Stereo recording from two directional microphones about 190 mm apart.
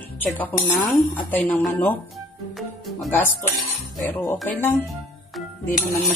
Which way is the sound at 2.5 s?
Centre (ahead or behind).